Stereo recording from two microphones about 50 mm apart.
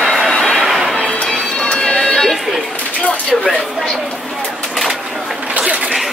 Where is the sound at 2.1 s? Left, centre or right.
Centre.